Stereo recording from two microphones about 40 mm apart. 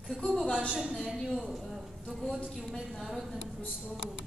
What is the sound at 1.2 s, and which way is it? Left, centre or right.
Speech, centre.